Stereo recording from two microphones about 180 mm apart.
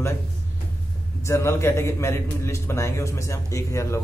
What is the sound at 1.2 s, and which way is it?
Speech, 15° left (ahead or behind).